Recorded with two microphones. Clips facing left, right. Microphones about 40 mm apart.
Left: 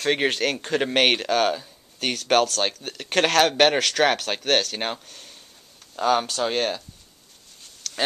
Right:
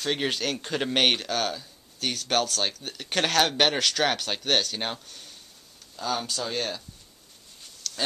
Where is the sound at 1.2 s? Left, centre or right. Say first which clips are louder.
Left 7 dB; left.